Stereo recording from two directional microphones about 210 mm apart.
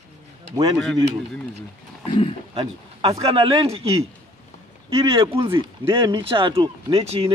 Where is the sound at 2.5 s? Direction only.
20° right (ahead or behind).